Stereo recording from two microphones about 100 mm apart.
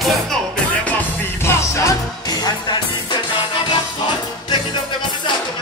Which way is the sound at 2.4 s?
45° left (ahead or behind).